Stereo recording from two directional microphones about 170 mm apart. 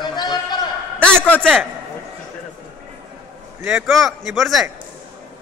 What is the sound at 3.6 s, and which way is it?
A man's voice, 5° right (ahead or behind).